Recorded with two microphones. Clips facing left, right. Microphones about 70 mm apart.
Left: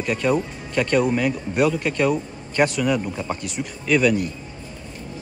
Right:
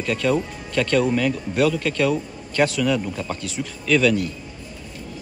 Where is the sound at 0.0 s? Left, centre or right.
Centre.